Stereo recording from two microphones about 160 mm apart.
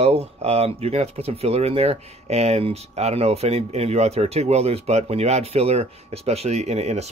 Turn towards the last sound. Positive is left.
turn(degrees=-45)  # may be behind; listen again after turning